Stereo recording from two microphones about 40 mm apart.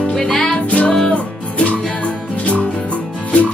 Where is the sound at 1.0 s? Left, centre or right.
Left.